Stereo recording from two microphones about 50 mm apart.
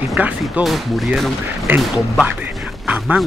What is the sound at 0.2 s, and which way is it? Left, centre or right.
Speech, right.